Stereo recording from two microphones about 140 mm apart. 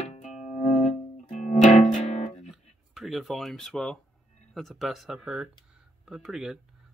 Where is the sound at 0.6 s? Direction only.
55° left (ahead or behind).